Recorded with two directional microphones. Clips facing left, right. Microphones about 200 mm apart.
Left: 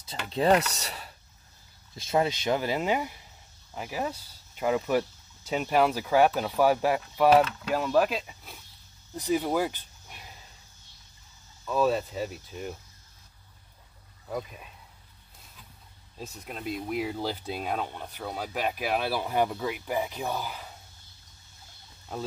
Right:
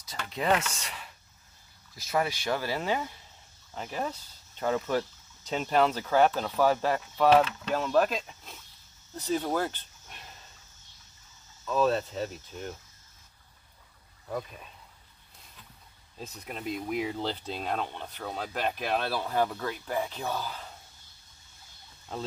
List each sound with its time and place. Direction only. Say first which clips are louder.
0.0 s speech: left 6 dB; 30° left (ahead or behind)
2.0 s speech: left 3 dB; 25° left (ahead or behind); by 10.4 s 5° left (ahead or behind)
11.6 s speech: left 1 dB; 10° left (ahead or behind)
14.3 s speech: left 1 dB; 5° left (ahead or behind)
16.2 s speech: even; centre (ahead or behind)
22.1 s speech: left 1 dB; 5° left (ahead or behind)